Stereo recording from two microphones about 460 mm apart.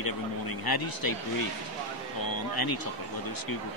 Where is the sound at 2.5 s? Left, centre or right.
Left.